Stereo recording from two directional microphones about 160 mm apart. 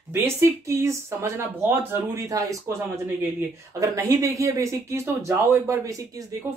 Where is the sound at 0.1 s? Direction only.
20° right (ahead or behind).